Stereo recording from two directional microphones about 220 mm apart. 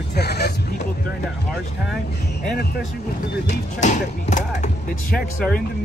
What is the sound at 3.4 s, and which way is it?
Music, 35° left (ahead or behind).